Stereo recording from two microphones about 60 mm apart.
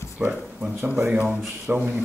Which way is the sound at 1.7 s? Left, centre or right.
Right.